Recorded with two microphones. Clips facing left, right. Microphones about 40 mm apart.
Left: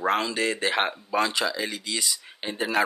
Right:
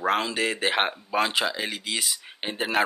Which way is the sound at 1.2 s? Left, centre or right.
Right.